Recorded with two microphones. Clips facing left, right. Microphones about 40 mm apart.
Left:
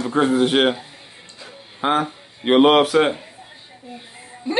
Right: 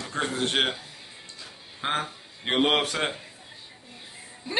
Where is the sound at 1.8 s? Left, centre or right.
Centre.